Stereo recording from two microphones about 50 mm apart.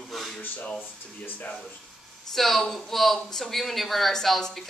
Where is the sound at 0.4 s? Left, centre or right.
Left.